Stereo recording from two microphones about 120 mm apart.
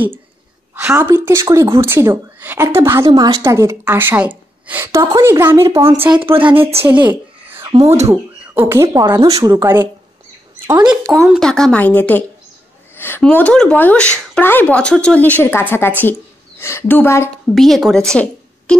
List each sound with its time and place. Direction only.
0.8 s speech: 15° right (ahead or behind)
3.1 s a woman's voice: 35° right (ahead or behind); by 6.7 s 15° right (ahead or behind)
6.8 s a sound: 15° right (ahead or behind)
8.1 s speech: 20° right (ahead or behind)
9.0 s speech: 35° right (ahead or behind)
10.5 s bird: 20° right (ahead or behind)
11.1 s speech: centre (ahead or behind)
12.9 s a sound: 20° left (ahead or behind)
13.2 s a woman's voice: 10° left (ahead or behind)
17.6 s a woman's voice: centre (ahead or behind)